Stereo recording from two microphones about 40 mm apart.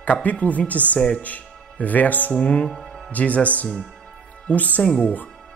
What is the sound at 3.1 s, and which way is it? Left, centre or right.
Speech, left.